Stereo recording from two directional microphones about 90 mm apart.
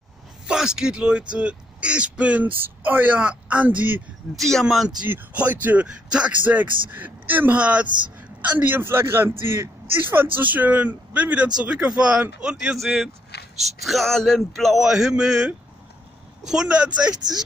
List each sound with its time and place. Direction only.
0.5 s speech: 10° right (ahead or behind)
4.4 s speech: 5° left (ahead or behind)
5.0 s a man's voice: 20° right (ahead or behind)
12.7 s speech: centre (ahead or behind)